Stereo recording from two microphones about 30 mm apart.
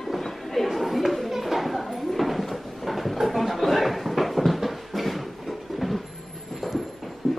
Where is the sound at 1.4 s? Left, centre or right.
Centre.